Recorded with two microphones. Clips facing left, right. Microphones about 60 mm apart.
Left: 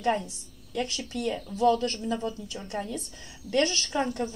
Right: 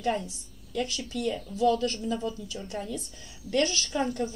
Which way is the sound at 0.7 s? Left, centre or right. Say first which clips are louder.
Even; left.